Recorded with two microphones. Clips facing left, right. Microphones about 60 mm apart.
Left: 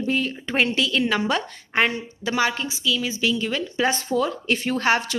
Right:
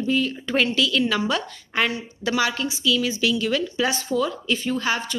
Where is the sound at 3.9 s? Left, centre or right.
Left.